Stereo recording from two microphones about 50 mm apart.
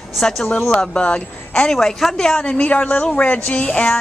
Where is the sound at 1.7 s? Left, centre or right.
Centre.